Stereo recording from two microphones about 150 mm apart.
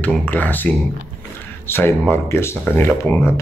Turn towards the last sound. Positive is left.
turn(degrees=15)  # may be behind; listen again after turning